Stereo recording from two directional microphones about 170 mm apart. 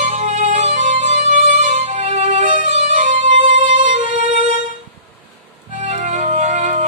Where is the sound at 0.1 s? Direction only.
50° right (ahead or behind).